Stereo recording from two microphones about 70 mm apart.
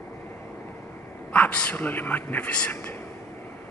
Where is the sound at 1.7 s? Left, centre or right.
Left.